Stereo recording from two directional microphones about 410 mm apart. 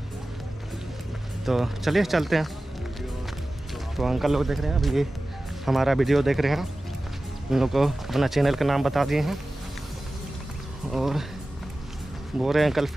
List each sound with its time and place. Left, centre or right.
1.4 s speech: centre
3.9 s speech: centre
10.9 s speech: centre
12.4 s speech: centre